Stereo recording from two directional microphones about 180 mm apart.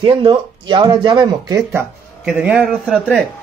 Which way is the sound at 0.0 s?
30° right (ahead or behind).